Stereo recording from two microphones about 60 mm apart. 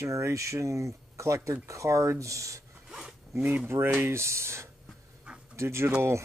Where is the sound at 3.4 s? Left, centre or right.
Right.